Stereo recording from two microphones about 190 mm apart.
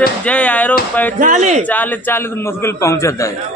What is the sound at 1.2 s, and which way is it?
Speech, 40° right (ahead or behind).